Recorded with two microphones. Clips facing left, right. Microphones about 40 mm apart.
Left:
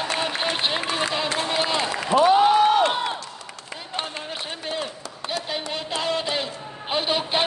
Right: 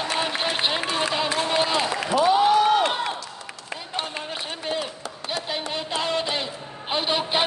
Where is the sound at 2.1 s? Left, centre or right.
Left.